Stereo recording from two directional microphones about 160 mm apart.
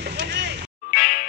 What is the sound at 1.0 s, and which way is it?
Music, 55° left (ahead or behind).